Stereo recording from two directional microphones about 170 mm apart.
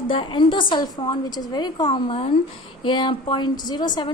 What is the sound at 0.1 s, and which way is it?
A woman's voice, 30° left (ahead or behind).